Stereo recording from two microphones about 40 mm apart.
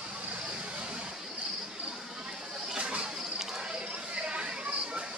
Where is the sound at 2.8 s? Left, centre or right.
Right.